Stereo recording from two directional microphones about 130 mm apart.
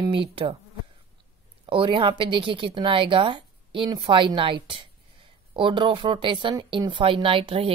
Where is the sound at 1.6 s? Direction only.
40° right (ahead or behind).